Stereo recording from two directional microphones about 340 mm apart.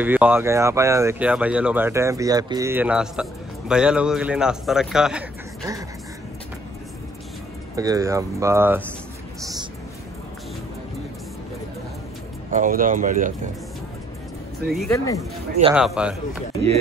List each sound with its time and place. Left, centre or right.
0.0 s speech: centre
7.7 s speech: centre
9.4 s vehicle: centre
12.4 s speech: right
14.7 s speech: centre
15.7 s speech: centre